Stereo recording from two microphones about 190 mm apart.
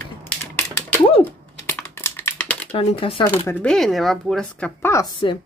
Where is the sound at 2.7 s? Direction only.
30° left (ahead or behind).